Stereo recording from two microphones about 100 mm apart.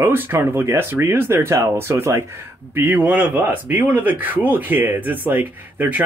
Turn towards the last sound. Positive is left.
turn(degrees=-20)  # may be behind; listen again after turning